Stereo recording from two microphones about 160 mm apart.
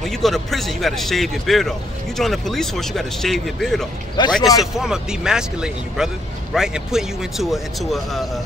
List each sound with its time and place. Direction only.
0.0 s a man's voice: centre (ahead or behind)
4.4 s a man's voice: 20° left (ahead or behind)
4.7 s a man's voice: 5° right (ahead or behind)